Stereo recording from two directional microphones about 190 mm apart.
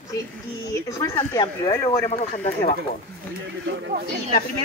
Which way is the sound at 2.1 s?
35° left (ahead or behind).